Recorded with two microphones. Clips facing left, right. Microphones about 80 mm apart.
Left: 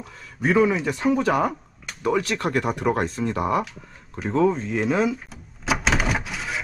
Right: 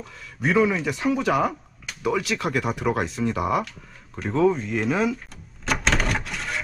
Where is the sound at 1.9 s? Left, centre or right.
Centre.